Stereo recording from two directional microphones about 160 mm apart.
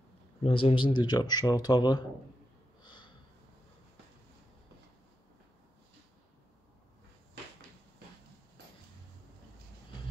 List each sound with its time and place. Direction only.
0.4 s speech: 35° left (ahead or behind)
2.8 s snort: 30° left (ahead or behind)